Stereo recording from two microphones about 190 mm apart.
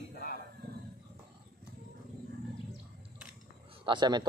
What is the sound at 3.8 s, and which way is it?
Speech, 25° right (ahead or behind).